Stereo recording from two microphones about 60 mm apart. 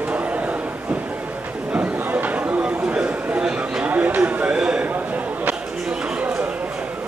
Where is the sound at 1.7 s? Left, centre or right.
Right.